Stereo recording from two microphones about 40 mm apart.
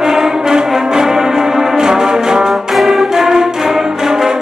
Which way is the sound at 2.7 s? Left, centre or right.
Centre.